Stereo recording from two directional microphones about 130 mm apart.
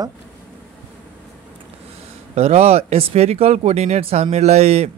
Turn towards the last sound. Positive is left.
turn(degrees=-55)  # may be behind; listen again after turning